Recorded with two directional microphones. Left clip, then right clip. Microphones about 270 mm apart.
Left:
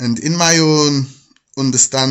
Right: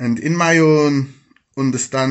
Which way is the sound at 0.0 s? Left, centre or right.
Left.